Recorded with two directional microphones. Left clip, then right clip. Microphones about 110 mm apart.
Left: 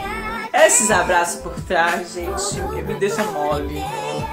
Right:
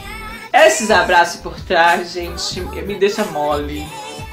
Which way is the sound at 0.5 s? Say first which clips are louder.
Right 4 dB; 35° left (ahead or behind).